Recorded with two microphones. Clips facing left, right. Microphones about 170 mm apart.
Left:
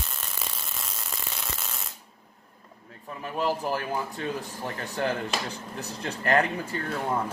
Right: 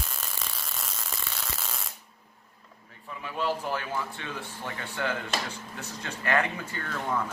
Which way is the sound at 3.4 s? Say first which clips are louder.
Left 2 dB; 35° left (ahead or behind).